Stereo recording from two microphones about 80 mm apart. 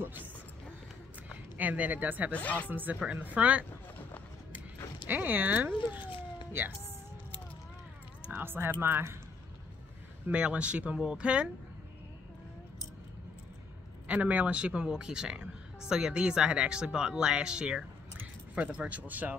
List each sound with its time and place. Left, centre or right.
0.0 s speech: right
1.6 s speech: right
2.3 s speech: centre
2.7 s speech: right
5.0 s speech: right
5.8 s speech: left
8.3 s speech: right
10.3 s speech: centre
14.0 s speech: centre